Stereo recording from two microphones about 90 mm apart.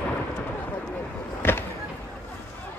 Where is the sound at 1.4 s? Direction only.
25° left (ahead or behind).